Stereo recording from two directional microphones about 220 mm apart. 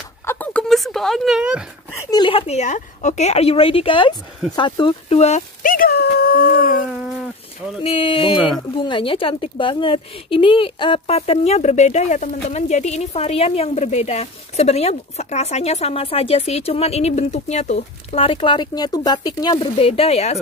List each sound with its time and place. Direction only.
0.3 s a sound: 5° left (ahead or behind)
1.9 s a woman's voice: 15° left (ahead or behind); by 6.8 s 40° left (ahead or behind)
7.8 s a woman's voice: 25° left (ahead or behind)